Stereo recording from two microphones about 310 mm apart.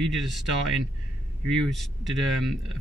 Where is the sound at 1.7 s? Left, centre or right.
Centre.